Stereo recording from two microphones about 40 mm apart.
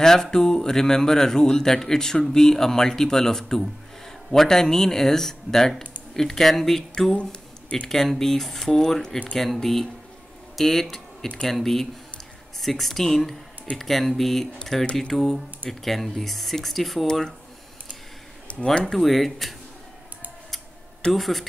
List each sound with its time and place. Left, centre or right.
0.0 s speech: centre
18.5 s a sound: left
18.9 s speech: centre
21.1 s speech: centre